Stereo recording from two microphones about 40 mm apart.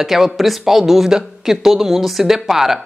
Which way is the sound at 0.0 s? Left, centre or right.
Centre.